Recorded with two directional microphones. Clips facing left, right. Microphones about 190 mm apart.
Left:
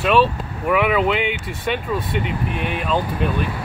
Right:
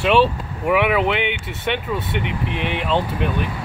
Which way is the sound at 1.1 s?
65° right (ahead or behind).